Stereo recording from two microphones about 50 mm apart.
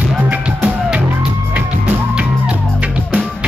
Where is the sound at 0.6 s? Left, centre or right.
Right.